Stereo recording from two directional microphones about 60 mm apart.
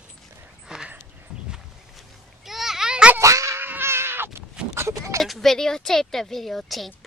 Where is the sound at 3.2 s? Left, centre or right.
Right.